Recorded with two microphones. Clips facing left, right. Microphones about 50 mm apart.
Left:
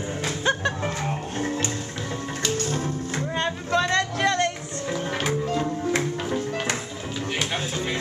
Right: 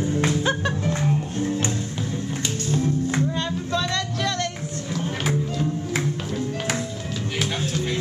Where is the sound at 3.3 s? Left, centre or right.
Left.